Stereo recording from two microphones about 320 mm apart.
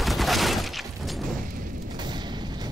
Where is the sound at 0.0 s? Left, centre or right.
Centre.